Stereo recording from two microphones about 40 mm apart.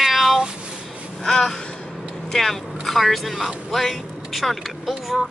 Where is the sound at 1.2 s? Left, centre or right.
Centre.